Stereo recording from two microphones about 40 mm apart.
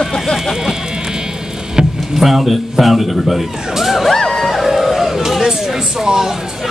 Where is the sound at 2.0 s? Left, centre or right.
Centre.